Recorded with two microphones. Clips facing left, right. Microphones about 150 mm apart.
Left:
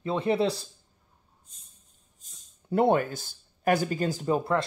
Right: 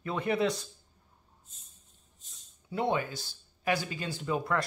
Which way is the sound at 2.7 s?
50° left (ahead or behind).